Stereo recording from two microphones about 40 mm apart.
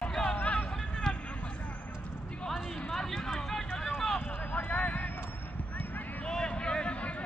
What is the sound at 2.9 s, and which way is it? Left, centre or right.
Run, centre.